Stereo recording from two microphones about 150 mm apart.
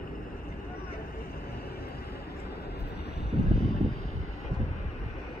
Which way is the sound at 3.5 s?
90° left.